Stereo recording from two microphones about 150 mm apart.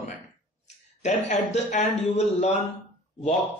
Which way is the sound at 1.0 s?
50° left (ahead or behind).